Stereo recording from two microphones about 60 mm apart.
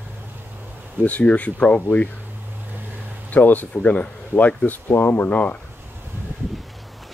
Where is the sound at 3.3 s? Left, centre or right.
Left.